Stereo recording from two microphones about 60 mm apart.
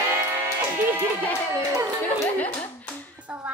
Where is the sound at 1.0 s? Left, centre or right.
Left.